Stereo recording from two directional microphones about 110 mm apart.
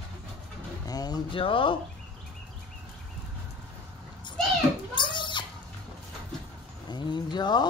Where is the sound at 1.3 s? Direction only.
55° left (ahead or behind).